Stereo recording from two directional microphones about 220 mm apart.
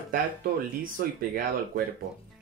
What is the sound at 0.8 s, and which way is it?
Speech, 40° right (ahead or behind).